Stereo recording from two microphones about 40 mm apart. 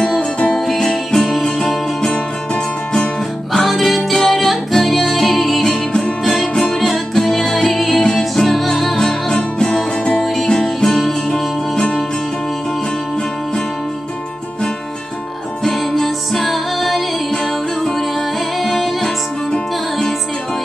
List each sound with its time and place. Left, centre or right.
0.7 s music: centre
3.5 s music: centre
10.2 s music: centre
11.7 s music: left
15.6 s music: centre
18.6 s music: centre